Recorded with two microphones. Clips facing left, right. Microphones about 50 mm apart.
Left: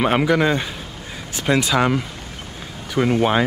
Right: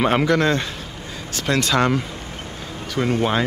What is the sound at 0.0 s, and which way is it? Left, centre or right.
Speech, centre.